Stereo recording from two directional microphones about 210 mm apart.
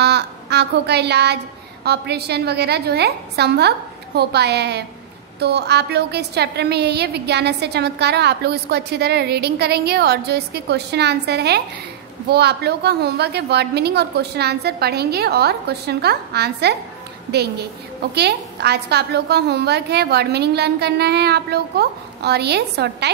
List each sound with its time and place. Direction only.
0.0 s a woman's voice: 50° right (ahead or behind)